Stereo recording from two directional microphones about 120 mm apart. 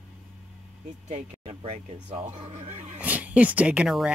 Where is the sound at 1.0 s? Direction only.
80° right; by 1.8 s 60° right (ahead or behind).